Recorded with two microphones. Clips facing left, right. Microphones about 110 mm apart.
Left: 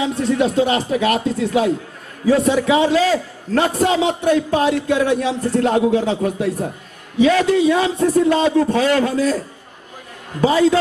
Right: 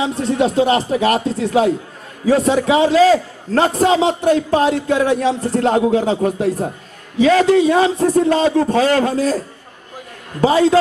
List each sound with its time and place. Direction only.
0.0 s a man's voice: 35° right (ahead or behind)
10.4 s a man's voice: 40° right (ahead or behind)